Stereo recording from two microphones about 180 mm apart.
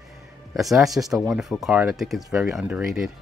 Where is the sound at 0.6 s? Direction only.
Centre (ahead or behind).